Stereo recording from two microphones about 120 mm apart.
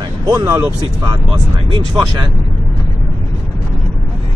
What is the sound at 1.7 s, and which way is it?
Speech, 40° right (ahead or behind).